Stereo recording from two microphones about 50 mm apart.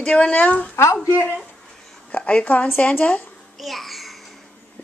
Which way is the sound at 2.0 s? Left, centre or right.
Left.